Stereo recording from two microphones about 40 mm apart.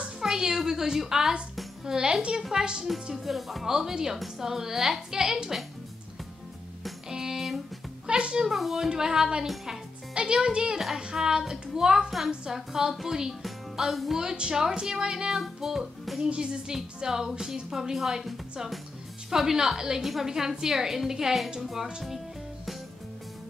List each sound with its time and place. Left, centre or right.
0.2 s a sound: centre
1.9 s a woman's voice: centre
3.3 s music: centre
3.7 s a woman's voice: centre
7.1 s music: centre
8.1 s a child's voice: right
8.5 s a woman's voice: centre
13.7 s music: centre
14.3 s speech: right
14.6 s a woman's voice: centre
15.3 s music: centre
16.3 s speech: right
16.7 s a woman's voice: centre
21.5 s music: centre